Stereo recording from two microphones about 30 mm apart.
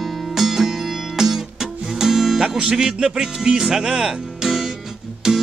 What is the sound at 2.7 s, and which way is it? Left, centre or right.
Speech, right.